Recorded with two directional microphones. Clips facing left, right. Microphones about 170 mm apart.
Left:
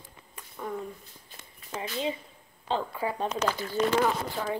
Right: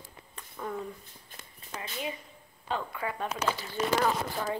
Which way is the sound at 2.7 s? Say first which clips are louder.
Left 4 dB; 30° left (ahead or behind).